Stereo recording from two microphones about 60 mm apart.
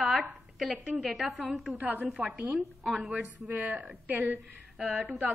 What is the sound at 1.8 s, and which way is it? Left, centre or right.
A woman's voice, right.